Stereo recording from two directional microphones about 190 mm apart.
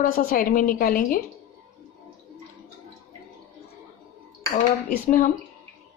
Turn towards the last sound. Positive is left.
turn(degrees=45)  # may be behind; listen again after turning